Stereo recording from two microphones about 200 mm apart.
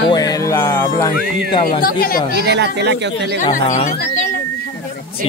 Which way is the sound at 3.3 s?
40° left (ahead or behind).